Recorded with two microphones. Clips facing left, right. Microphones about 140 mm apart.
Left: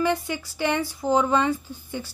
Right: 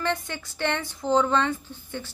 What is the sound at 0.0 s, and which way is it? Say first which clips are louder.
A woman's voice: left 5 dB; 10° left (ahead or behind).